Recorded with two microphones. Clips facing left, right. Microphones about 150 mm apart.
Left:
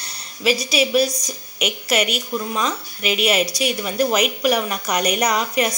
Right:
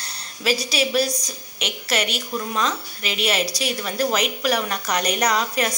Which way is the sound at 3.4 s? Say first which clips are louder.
Left 3 dB; 35° right (ahead or behind).